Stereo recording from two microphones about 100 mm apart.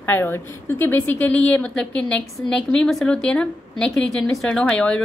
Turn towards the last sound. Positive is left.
turn(degrees=10)  # may be behind; listen again after turning